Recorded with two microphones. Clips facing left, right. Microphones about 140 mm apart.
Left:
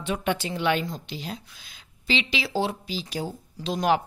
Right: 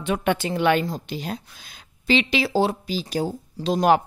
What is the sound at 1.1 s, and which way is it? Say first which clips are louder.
A woman's voice: right 5 dB; 50° right (ahead or behind).